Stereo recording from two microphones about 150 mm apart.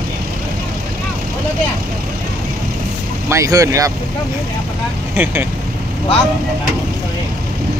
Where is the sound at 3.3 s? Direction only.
20° right (ahead or behind).